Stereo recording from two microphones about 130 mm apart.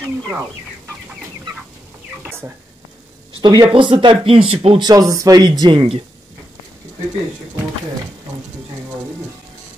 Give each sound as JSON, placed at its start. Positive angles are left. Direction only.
{"t": 3.3, "sound": "speech", "side_deg": -35}